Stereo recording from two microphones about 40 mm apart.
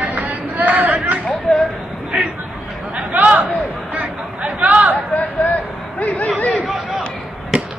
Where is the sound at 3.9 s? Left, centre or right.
Right.